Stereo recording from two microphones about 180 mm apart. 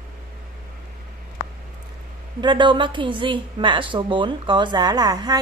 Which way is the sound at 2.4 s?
25° right (ahead or behind).